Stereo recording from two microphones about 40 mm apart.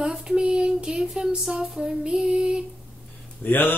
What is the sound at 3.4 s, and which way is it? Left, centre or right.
Speech, left.